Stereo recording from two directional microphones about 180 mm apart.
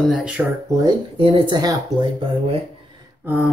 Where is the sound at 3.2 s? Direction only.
10° right (ahead or behind).